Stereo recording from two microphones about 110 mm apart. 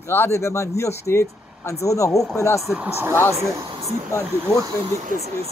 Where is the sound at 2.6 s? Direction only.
Centre (ahead or behind).